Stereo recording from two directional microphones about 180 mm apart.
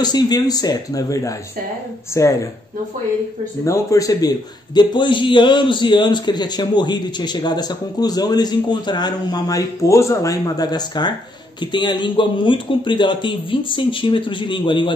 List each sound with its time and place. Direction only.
0.0 s a man's voice: 20° left (ahead or behind)
3.6 s a man's voice: 15° left (ahead or behind)